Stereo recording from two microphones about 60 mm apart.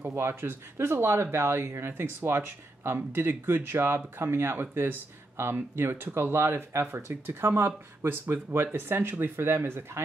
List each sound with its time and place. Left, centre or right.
0.0 s speech: right